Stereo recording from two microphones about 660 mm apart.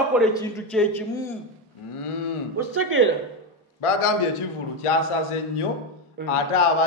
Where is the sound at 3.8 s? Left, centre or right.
Left.